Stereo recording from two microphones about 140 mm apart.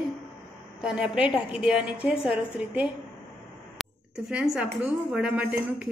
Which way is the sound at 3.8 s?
5° right (ahead or behind).